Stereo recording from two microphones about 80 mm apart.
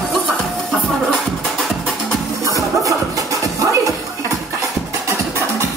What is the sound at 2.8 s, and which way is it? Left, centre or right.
Music, right.